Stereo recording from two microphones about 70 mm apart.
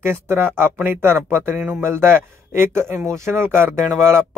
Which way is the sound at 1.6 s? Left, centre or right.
Right.